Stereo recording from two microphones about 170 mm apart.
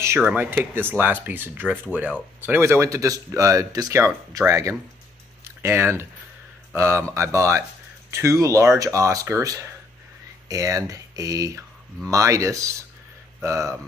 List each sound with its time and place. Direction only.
0.0 s speech: 10° right (ahead or behind)